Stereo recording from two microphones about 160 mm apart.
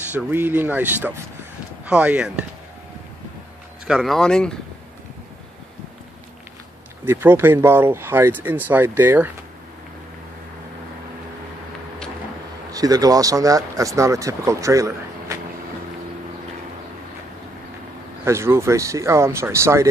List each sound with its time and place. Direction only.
0.3 s speech: 15° right (ahead or behind)
3.8 s speech: centre (ahead or behind)
7.1 s speech: 15° right (ahead or behind)
12.7 s speech: 25° right (ahead or behind)
18.2 s speech: 15° right (ahead or behind)